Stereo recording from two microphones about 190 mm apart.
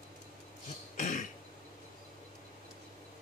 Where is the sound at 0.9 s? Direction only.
40° left (ahead or behind).